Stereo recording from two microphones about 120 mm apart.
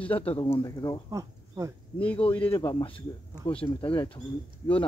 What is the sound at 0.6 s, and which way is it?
Speech, 35° left (ahead or behind).